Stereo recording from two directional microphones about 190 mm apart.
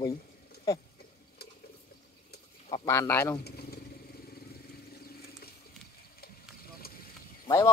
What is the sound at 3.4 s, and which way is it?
Motorcycle, 55° left (ahead or behind).